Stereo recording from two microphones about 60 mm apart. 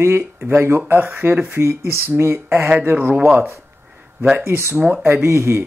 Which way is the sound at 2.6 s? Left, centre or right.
Right.